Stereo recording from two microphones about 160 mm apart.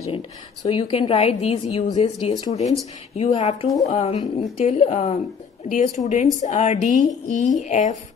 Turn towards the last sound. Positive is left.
turn(degrees=50)  # may be behind; listen again after turning